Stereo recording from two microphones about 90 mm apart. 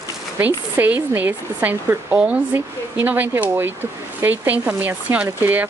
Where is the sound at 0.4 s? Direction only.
20° right (ahead or behind).